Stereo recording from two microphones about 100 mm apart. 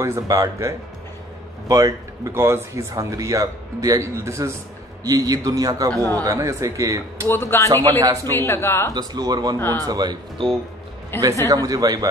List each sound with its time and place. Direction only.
0.0 s speech: 30° right (ahead or behind)
7.2 s a man's voice: 25° left (ahead or behind)
8.0 s speech: 40° right (ahead or behind)
8.3 s a man's voice: 25° left (ahead or behind)
8.9 s speech: 40° right (ahead or behind)
9.6 s a man's voice: 20° left (ahead or behind)
9.8 s speech: 45° right (ahead or behind)
11.1 s a man's voice: 20° left (ahead or behind)
11.4 s speech: 35° right (ahead or behind)